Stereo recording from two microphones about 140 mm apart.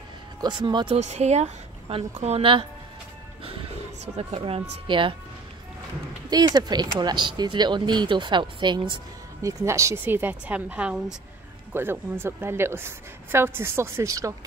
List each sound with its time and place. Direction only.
0.4 s speech: 30° right (ahead or behind)
0.9 s a woman's voice: 55° right (ahead or behind)
4.0 s speech: 50° right (ahead or behind)
6.3 s speech: 30° right (ahead or behind)
9.4 s a woman's voice: 25° right (ahead or behind)